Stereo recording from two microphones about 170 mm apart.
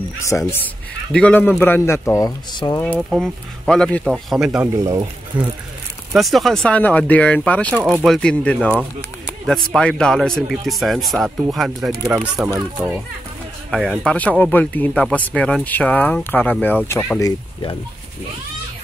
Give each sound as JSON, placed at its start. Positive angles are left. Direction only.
{"t": 0.3, "sound": "speech", "side_deg": 20}
{"t": 3.0, "sound": "speech", "side_deg": 0}
{"t": 4.7, "sound": "speech", "side_deg": -20}
{"t": 6.1, "sound": "speech", "side_deg": 0}
{"t": 9.8, "sound": "speech", "side_deg": 5}
{"t": 13.7, "sound": "speech", "side_deg": 5}